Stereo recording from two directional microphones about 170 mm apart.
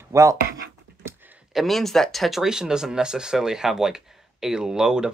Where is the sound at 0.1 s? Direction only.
20° right (ahead or behind).